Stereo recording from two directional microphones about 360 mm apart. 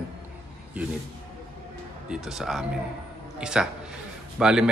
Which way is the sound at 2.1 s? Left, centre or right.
Centre.